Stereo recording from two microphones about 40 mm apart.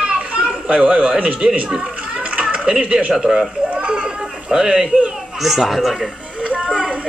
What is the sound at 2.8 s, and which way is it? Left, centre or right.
Speech, right.